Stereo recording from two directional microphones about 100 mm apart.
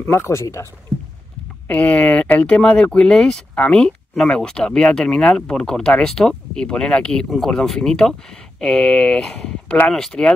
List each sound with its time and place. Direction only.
0.0 s speech: 25° left (ahead or behind)
1.7 s speech: 15° left (ahead or behind)